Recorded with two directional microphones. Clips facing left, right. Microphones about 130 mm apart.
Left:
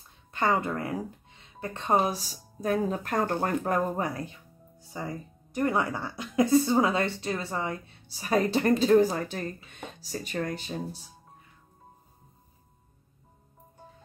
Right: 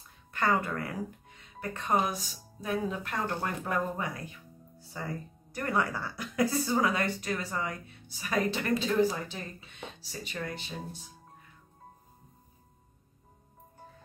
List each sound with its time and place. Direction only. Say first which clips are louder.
0.3 s speech: left 2 dB; 20° left (ahead or behind)
4.7 s speech: left 2 dB; 15° left (ahead or behind); by 11.0 s 40° left (ahead or behind)